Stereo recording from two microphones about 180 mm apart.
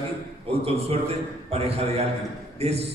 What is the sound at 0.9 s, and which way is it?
A man's voice, 35° right (ahead or behind).